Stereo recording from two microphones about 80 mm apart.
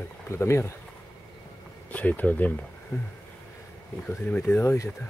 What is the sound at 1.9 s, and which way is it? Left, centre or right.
Speech, centre.